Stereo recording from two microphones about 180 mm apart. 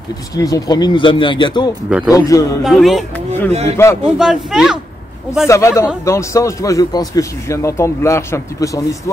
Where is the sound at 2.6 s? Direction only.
Centre (ahead or behind).